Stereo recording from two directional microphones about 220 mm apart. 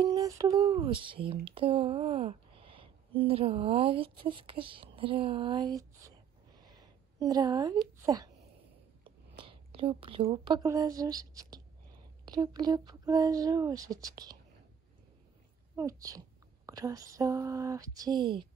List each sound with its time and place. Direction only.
0.0 s speech: 15° right (ahead or behind)
15.7 s speech: 15° right (ahead or behind)